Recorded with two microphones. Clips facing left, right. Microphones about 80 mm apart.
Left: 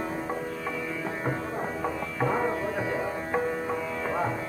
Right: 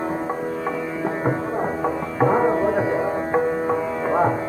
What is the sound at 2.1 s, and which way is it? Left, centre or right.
Music, right.